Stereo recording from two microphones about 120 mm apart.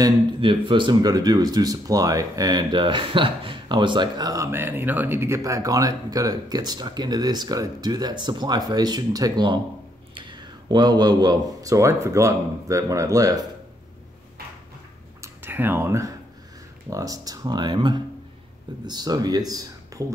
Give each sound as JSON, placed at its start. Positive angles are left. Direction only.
{"t": 0.4, "sound": "speech", "side_deg": -45}
{"t": 15.2, "sound": "a sound", "side_deg": -15}
{"t": 16.9, "sound": "speech", "side_deg": -30}